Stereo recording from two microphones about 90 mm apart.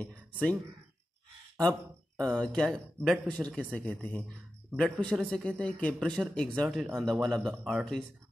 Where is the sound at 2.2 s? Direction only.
5° left (ahead or behind).